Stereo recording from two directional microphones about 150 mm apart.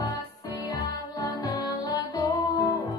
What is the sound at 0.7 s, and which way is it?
Music, 25° left (ahead or behind).